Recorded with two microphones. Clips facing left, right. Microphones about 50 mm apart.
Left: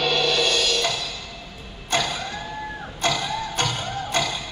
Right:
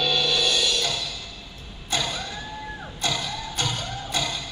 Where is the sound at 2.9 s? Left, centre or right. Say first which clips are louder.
Left 5 dB; left.